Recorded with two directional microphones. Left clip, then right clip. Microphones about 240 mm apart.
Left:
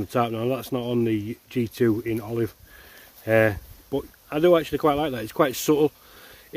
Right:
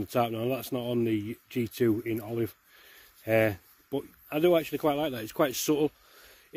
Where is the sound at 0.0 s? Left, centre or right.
Right.